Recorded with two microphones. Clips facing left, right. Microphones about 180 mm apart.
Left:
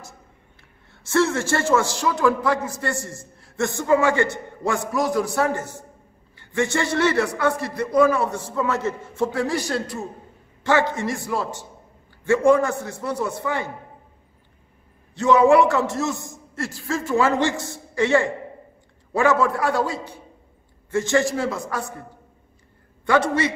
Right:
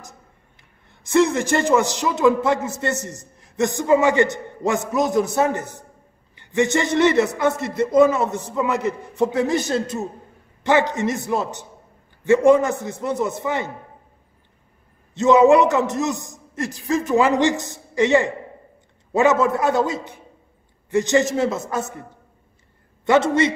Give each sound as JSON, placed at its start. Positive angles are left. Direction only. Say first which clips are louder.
{"t": 0.6, "sound": "a man's voice", "louder": "left 1 dB", "side_deg": -15}
{"t": 15.1, "sound": "a man's voice", "louder": "right 2 dB", "side_deg": -20}
{"t": 23.0, "sound": "a man's voice", "louder": "right 3 dB", "side_deg": -25}